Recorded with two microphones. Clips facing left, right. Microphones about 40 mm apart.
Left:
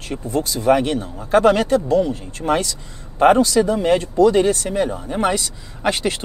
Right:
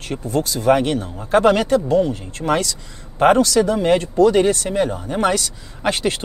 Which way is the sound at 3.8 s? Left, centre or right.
Right.